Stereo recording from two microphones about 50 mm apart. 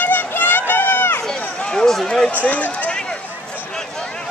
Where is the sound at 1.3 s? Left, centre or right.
Centre.